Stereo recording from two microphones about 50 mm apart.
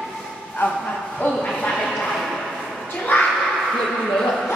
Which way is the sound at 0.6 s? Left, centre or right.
Left.